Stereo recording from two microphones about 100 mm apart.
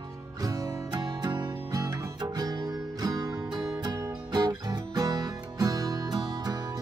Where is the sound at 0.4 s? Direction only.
35° right (ahead or behind).